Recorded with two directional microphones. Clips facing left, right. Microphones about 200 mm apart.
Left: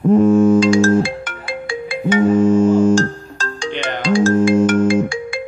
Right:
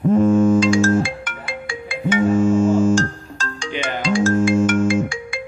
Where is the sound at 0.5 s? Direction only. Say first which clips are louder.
Left 3 dB; 35° left (ahead or behind).